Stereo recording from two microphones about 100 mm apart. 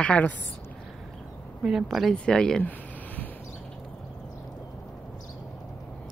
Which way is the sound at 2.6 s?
15° left (ahead or behind).